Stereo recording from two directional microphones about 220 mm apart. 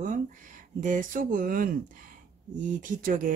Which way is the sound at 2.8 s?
35° right (ahead or behind).